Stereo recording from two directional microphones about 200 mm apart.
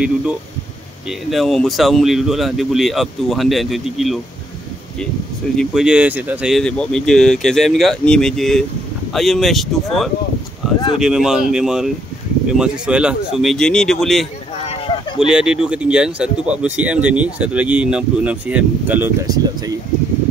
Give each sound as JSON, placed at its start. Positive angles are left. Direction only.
{"t": 0.0, "sound": "speech", "side_deg": -5}
{"t": 5.6, "sound": "speech", "side_deg": 0}
{"t": 14.7, "sound": "a sound", "side_deg": 25}
{"t": 15.1, "sound": "speech", "side_deg": -5}